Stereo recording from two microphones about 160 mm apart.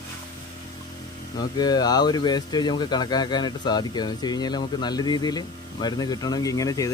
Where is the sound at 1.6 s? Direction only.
25° left (ahead or behind).